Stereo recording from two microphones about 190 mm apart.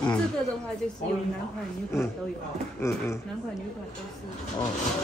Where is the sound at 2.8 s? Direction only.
15° left (ahead or behind).